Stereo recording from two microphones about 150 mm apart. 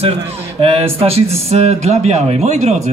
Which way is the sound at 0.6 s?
40° right (ahead or behind).